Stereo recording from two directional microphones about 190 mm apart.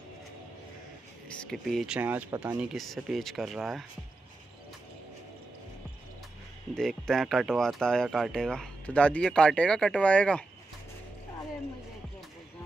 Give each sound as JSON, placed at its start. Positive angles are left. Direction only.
{"t": 1.4, "sound": "speech", "side_deg": 5}
{"t": 6.7, "sound": "speech", "side_deg": 5}